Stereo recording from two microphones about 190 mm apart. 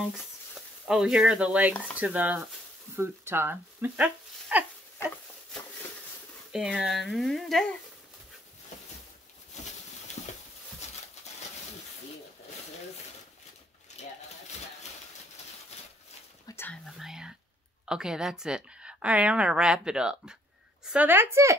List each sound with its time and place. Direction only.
0.8 s a woman's voice: 5° right (ahead or behind)
4.9 s a sound: 10° left (ahead or behind)
6.5 s a woman's voice: 5° right (ahead or behind)
10.2 s a sound: 35° left (ahead or behind)
16.4 s whispering: 10° left (ahead or behind)
16.8 s whispering: centre (ahead or behind)
17.8 s a woman's voice: 5° right (ahead or behind)